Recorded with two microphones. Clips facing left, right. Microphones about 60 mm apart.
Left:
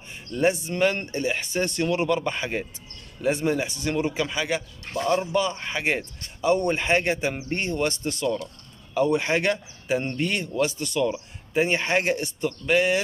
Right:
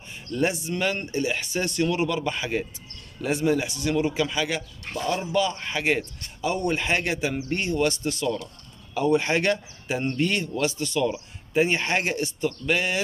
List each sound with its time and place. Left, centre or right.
0.3 s speech: left
10.8 s speech: left